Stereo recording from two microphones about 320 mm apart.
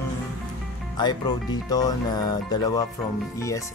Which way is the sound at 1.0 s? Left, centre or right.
Centre.